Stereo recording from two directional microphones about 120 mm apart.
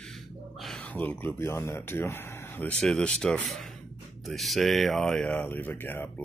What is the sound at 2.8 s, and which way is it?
Speech, 5° left (ahead or behind).